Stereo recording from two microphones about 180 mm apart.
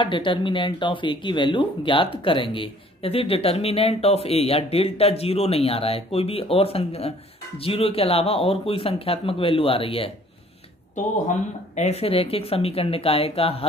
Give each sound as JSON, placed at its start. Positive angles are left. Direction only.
{"t": 0.0, "sound": "speech", "side_deg": 30}
{"t": 11.2, "sound": "speech", "side_deg": 40}